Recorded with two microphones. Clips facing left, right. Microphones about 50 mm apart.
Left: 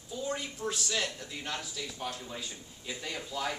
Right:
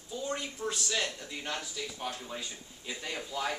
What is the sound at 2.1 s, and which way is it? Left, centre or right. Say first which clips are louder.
A man's voice: right 1 dB; centre.